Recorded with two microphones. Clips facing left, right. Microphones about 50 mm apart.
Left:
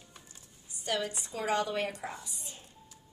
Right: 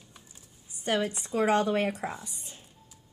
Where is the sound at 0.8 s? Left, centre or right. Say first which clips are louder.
Right 5 dB; right.